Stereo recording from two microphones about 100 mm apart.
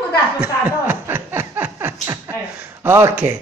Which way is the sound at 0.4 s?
20° right (ahead or behind).